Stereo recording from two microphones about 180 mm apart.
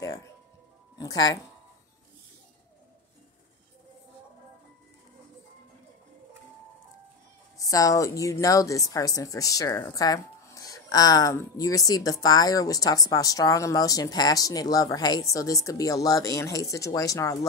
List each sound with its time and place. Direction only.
0.9 s speech: 20° left (ahead or behind)
7.5 s a woman's voice: 20° left (ahead or behind)